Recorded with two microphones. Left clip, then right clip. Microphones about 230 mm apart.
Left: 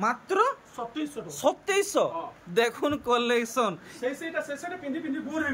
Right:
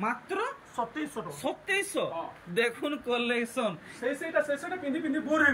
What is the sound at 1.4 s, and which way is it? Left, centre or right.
Speech, centre.